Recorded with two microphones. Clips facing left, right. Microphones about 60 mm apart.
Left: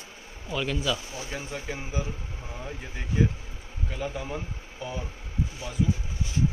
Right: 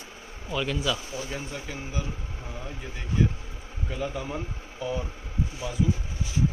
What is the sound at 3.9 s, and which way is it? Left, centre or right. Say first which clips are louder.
Speech: right 1 dB; centre.